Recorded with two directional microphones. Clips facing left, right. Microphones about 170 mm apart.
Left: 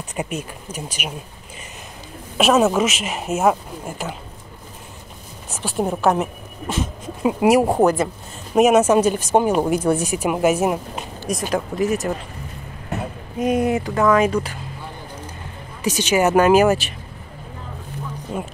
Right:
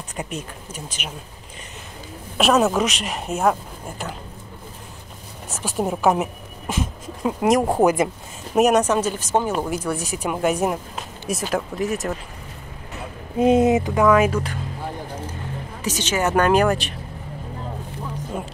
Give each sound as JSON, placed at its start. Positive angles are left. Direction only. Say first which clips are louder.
{"t": 0.1, "sound": "speech", "louder": "left 4 dB", "side_deg": 10}
{"t": 2.3, "sound": "speech", "louder": "left 2 dB", "side_deg": 0}
{"t": 5.6, "sound": "speech", "louder": "left 1 dB", "side_deg": -5}
{"t": 7.2, "sound": "speech", "louder": "left 3 dB", "side_deg": 10}
{"t": 7.8, "sound": "speech", "louder": "left 1 dB", "side_deg": -10}
{"t": 8.5, "sound": "speech", "louder": "left 3 dB", "side_deg": 0}
{"t": 10.1, "sound": "speech", "louder": "left 4 dB", "side_deg": 10}
{"t": 13.4, "sound": "speech", "louder": "right 3 dB", "side_deg": -25}
{"t": 14.0, "sound": "speech", "louder": "left 1 dB", "side_deg": -5}
{"t": 15.8, "sound": "speech", "louder": "left 5 dB", "side_deg": 10}